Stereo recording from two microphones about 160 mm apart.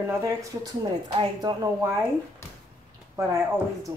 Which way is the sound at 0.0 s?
20° right (ahead or behind).